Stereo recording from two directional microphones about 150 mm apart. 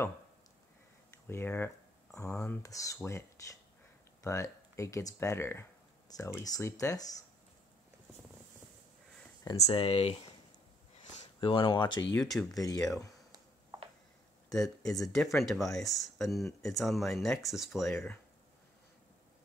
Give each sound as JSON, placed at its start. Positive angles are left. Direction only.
{"t": 1.2, "sound": "speech", "side_deg": 15}
{"t": 9.5, "sound": "speech", "side_deg": 25}
{"t": 9.8, "sound": "speech", "side_deg": 45}
{"t": 11.4, "sound": "speech", "side_deg": 35}
{"t": 12.2, "sound": "speech", "side_deg": 5}
{"t": 12.5, "sound": "speech", "side_deg": 25}
{"t": 13.3, "sound": "a sound", "side_deg": -30}
{"t": 15.1, "sound": "speech", "side_deg": 0}